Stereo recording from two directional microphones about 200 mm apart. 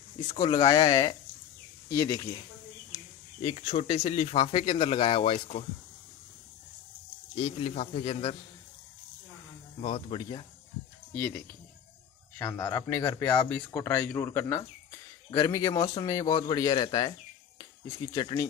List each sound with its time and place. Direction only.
0.3 s speech: 20° left (ahead or behind)
2.9 s speech: 30° left (ahead or behind)
7.3 s speech: 25° left (ahead or behind)
9.8 s speech: 30° left (ahead or behind)
12.5 s speech: 15° left (ahead or behind)
15.8 s a man's voice: 30° left (ahead or behind)
16.1 s speech: 20° left (ahead or behind)